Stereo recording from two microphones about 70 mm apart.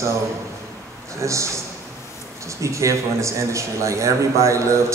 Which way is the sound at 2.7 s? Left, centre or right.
Right.